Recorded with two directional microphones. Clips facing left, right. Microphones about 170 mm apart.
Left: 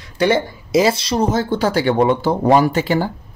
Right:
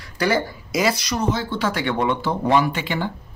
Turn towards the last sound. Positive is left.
turn(degrees=40)  # may be behind; listen again after turning